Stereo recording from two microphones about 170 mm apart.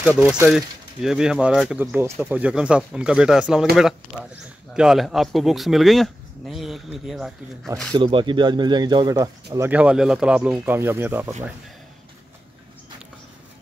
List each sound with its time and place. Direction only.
0.2 s speech: 5° right (ahead or behind)
7.9 s speech: 30° right (ahead or behind)
9.7 s speech: 5° right (ahead or behind)